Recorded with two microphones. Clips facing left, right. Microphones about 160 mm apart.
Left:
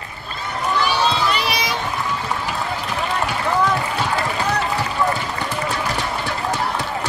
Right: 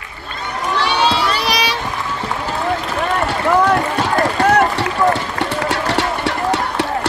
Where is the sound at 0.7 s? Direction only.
70° right (ahead or behind).